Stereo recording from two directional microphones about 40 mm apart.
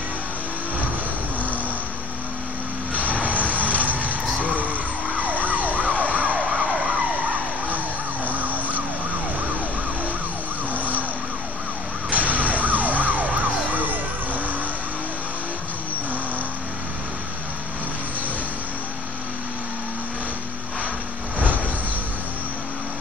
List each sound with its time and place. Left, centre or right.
2.9 s vehicle: right
3.5 s music: right
4.4 s emergency vehicle: right
6.0 s vehicle: right
6.4 s emergency vehicle: right
8.3 s emergency vehicle: right
10.7 s vehicle: right
12.1 s vehicle: right